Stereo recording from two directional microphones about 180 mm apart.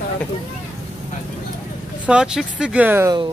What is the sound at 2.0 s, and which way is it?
Speech, 5° right (ahead or behind).